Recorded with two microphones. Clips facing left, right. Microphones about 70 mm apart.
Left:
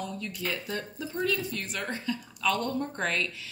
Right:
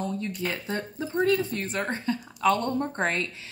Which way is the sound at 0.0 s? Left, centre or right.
Right.